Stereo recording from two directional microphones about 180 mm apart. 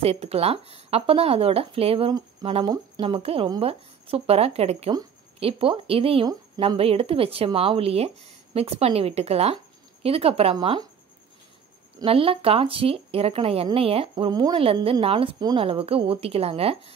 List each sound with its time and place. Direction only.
0.0 s speech: 35° right (ahead or behind)
12.0 s speech: 30° right (ahead or behind)